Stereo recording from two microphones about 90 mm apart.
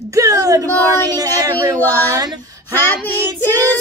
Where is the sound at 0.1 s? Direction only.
40° right (ahead or behind).